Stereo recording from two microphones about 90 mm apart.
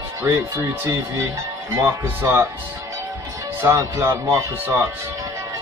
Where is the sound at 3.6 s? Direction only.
35° right (ahead or behind).